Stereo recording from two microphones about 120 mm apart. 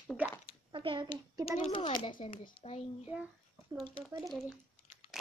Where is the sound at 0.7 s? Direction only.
45° right (ahead or behind).